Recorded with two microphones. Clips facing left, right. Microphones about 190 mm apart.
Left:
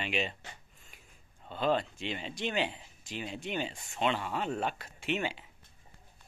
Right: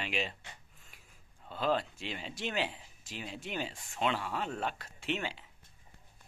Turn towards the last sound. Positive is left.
turn(degrees=5)  # may be behind; listen again after turning